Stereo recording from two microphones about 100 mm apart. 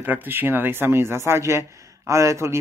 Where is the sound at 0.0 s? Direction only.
20° right (ahead or behind).